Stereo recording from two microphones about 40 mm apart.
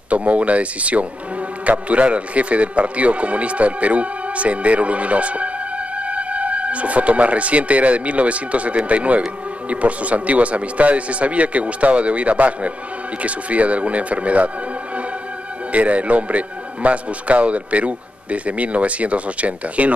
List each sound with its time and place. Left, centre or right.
0.1 s a man's voice: right
15.7 s a man's voice: right